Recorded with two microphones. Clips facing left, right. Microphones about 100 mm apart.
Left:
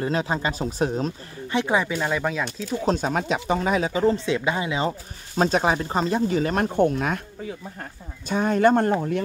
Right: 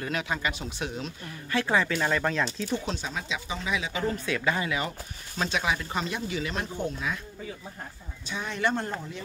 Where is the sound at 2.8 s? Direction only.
45° left (ahead or behind); by 4.9 s 25° left (ahead or behind).